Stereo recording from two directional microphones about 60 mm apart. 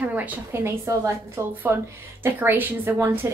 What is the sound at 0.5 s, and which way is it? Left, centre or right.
Speech, right.